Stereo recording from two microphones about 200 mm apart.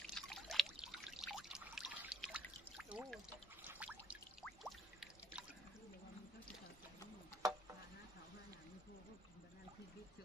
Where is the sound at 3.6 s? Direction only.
10° right (ahead or behind).